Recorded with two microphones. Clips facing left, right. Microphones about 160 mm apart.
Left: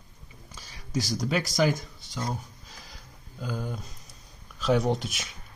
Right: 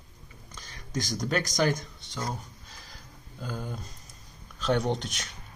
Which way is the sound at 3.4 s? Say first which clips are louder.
Left 3 dB; centre (ahead or behind).